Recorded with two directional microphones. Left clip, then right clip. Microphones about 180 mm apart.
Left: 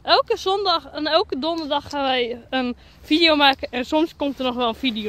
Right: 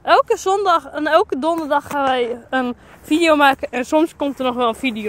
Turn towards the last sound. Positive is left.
turn(degrees=10)  # may be behind; listen again after turning